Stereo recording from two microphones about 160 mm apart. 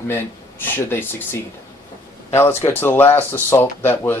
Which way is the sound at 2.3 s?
15° left (ahead or behind).